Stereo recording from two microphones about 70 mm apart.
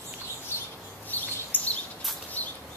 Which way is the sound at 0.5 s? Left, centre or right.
Left.